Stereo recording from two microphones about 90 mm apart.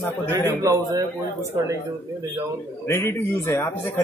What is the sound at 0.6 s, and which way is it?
Speech, 40° right (ahead or behind).